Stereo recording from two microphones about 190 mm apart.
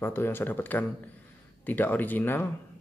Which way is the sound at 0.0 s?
10° left (ahead or behind).